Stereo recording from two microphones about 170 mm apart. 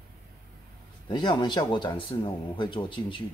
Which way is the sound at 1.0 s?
25° left (ahead or behind).